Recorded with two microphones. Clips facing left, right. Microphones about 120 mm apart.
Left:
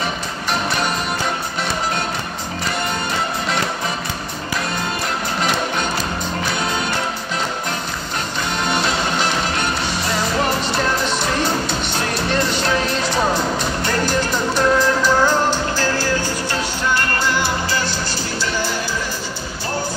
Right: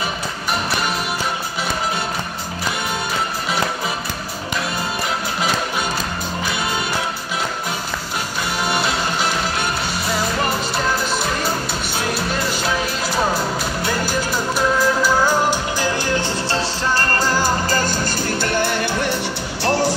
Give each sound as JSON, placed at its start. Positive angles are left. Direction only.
{"t": 8.6, "sound": "music", "side_deg": -5}
{"t": 18.4, "sound": "music", "side_deg": -60}
{"t": 19.6, "sound": "music", "side_deg": -80}